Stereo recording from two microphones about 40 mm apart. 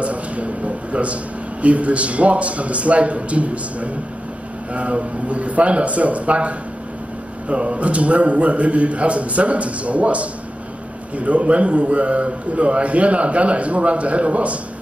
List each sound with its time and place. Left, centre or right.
0.0 s a man's voice: right